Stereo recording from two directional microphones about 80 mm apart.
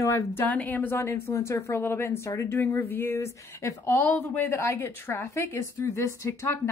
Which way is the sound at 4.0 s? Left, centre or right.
Left.